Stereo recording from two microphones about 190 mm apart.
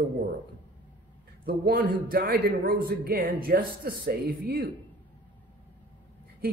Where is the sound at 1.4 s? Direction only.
50° right (ahead or behind).